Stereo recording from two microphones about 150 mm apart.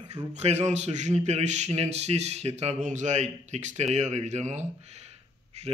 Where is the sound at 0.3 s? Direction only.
45° right (ahead or behind).